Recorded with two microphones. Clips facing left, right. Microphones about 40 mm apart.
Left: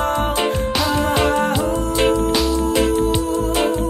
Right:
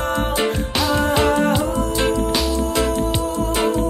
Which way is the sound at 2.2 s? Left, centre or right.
Centre.